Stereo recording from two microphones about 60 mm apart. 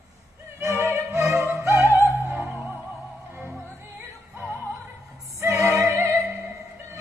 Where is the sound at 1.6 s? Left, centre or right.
Right.